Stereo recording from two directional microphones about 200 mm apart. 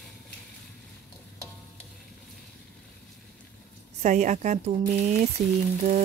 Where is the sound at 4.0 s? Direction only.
35° right (ahead or behind).